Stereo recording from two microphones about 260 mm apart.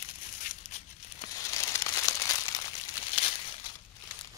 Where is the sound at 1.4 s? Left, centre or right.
Centre.